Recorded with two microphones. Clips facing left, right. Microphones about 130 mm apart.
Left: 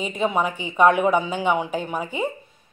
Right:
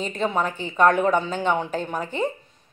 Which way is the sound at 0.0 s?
10° left (ahead or behind).